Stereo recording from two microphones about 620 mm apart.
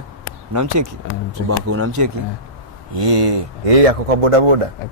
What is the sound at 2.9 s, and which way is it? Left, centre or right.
Speech, right.